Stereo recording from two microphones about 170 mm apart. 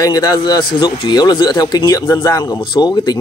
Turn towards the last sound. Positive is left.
turn(degrees=25)  # may be behind; listen again after turning